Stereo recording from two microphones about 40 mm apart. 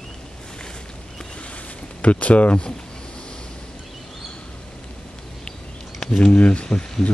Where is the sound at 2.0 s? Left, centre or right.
Left.